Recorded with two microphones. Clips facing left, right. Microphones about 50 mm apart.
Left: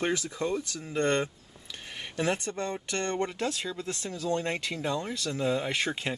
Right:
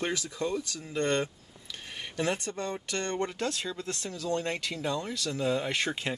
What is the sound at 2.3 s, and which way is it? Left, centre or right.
Speech, left.